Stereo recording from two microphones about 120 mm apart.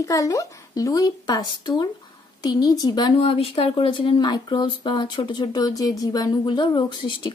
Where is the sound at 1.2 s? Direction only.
40° left (ahead or behind).